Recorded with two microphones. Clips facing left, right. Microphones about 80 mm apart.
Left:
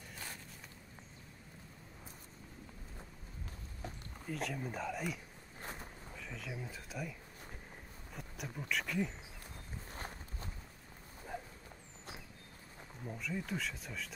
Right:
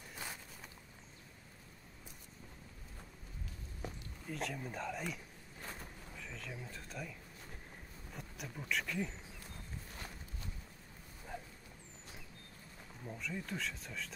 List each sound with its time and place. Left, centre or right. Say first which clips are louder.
0.1 s a sound: right 2 dB; centre
4.3 s speech: left 2 dB; centre
9.8 s walk: left 3 dB; left
11.3 s walk: left 3 dB; centre
13.0 s speech: left 2 dB; centre